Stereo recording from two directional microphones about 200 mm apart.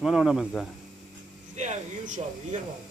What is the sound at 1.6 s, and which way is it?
Speech, 35° right (ahead or behind).